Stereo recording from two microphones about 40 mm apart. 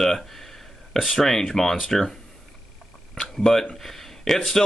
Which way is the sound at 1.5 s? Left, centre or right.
Centre.